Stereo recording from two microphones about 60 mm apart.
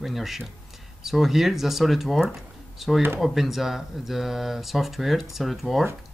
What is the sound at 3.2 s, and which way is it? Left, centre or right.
Speech, centre.